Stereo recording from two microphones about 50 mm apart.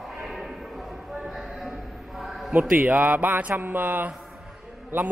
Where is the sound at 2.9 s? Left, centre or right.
Right.